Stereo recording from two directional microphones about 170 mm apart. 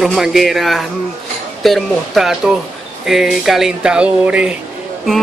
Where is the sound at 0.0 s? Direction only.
Centre (ahead or behind).